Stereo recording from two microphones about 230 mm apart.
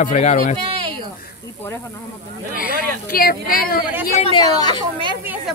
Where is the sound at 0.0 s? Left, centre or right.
Left.